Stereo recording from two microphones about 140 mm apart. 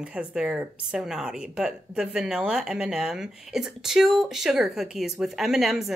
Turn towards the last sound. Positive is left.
turn(degrees=0)  # may be behind; listen again after turning